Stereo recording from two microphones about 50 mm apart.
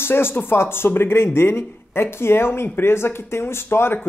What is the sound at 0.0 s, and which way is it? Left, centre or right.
Speech, left.